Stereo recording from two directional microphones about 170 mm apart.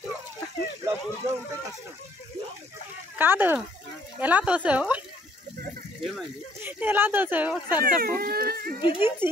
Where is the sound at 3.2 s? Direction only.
10° right (ahead or behind).